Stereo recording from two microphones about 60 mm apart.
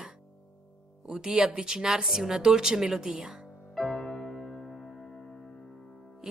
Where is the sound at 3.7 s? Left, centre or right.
Centre.